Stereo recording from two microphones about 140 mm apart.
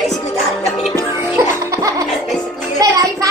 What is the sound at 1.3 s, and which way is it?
Music, 20° right (ahead or behind).